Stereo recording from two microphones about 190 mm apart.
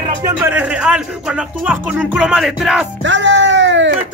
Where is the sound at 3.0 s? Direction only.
70° right (ahead or behind).